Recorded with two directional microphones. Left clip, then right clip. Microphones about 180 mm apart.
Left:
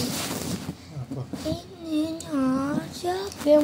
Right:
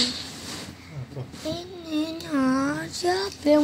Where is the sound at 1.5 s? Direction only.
35° right (ahead or behind).